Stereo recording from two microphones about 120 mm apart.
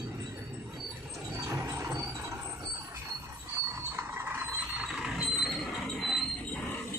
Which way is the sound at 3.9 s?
20° right (ahead or behind).